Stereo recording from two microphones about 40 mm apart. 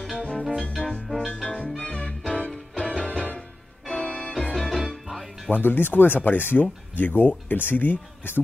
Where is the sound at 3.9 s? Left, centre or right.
Left.